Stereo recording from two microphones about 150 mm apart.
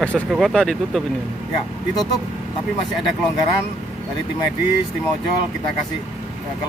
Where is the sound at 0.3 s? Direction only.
Centre (ahead or behind).